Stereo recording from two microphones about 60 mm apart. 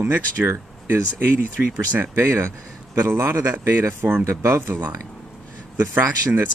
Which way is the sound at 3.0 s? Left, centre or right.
Right.